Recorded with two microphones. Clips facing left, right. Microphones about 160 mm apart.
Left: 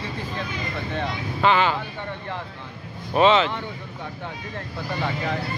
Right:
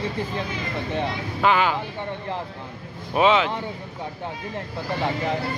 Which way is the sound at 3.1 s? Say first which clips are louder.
Left 1 dB; 10° right (ahead or behind).